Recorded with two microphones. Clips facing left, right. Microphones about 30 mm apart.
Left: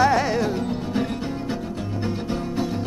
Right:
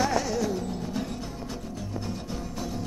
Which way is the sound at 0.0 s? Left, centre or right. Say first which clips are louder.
Left 7 dB; left.